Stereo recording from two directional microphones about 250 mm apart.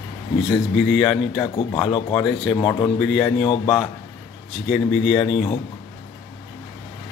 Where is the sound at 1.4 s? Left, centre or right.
Centre.